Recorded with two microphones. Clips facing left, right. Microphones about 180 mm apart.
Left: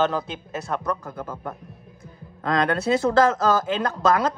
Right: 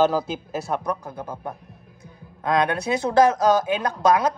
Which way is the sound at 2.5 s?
15° right (ahead or behind).